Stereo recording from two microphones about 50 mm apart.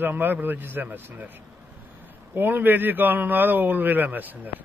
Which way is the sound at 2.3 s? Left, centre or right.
Right.